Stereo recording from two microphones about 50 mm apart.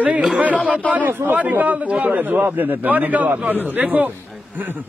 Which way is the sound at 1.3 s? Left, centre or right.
Right.